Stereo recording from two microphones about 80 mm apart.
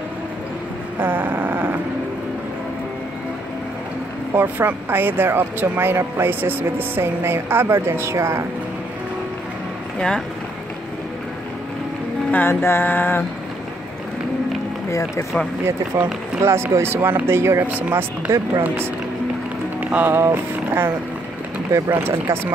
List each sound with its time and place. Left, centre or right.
0.9 s a sound: right
4.3 s speech: right
9.9 s speech: centre
12.3 s music: left
14.9 s speech: left
15.6 s speech: right
19.8 s music: right
20.2 s speech: right
21.9 s speech: right